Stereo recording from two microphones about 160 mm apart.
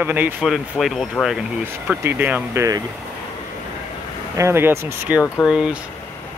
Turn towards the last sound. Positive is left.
turn(degrees=-5)  # may be behind; listen again after turning